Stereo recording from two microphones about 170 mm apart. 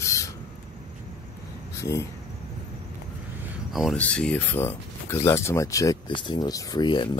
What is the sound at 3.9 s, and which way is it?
Speech, 5° left (ahead or behind).